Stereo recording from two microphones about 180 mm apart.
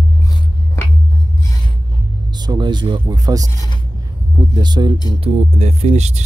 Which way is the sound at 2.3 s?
25° right (ahead or behind).